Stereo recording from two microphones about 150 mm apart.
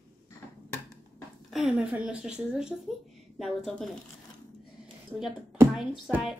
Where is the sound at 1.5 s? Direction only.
Centre (ahead or behind).